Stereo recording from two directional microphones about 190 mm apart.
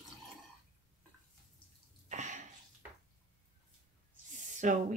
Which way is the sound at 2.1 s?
40° right (ahead or behind).